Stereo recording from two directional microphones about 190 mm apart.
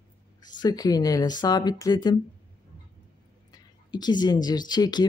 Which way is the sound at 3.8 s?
20° left (ahead or behind).